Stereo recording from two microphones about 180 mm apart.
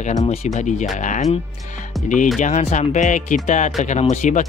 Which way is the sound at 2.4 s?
40° left (ahead or behind).